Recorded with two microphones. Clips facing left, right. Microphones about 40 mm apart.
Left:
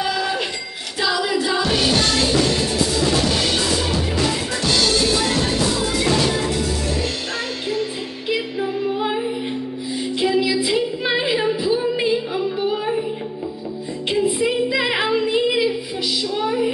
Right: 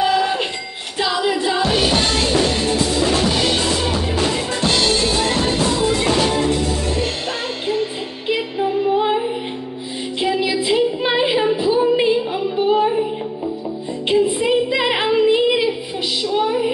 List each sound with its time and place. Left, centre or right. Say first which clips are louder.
0.0 s a sound: right 5 dB; right
1.0 s music: right 1 dB; centre
4.6 s music: even; right
8.3 s music: right 3 dB; right
10.2 s music: even; right
11.7 s female singing: right 4 dB; right
14.4 s music: right 2 dB; centre
15.3 s child singing: right 2 dB; right